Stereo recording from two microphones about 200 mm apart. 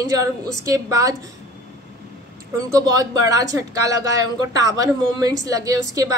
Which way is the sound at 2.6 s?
20° right (ahead or behind).